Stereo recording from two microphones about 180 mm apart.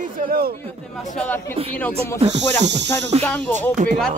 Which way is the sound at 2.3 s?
75° right (ahead or behind).